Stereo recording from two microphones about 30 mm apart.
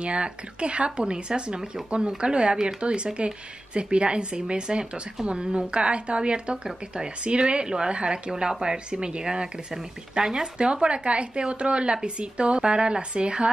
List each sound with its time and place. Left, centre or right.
0.0 s a woman's voice: right
10.6 s speech: right